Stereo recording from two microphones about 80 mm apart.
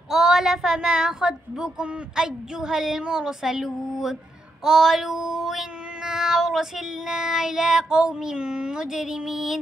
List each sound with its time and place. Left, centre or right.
0.1 s child singing: centre